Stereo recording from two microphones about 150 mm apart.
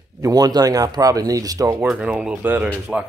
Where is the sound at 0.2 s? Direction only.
25° right (ahead or behind).